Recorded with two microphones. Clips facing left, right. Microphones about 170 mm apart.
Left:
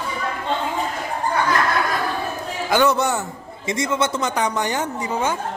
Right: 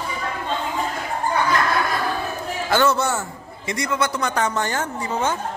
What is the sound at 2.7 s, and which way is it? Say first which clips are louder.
A man's voice: left 1 dB; 15° left (ahead or behind).